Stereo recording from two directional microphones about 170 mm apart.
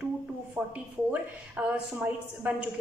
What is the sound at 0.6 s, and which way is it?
A woman's voice, 15° right (ahead or behind).